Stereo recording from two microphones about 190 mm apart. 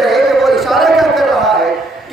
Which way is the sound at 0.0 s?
Centre (ahead or behind).